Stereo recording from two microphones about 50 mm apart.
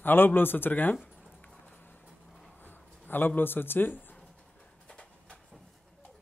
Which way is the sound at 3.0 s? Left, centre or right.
Left.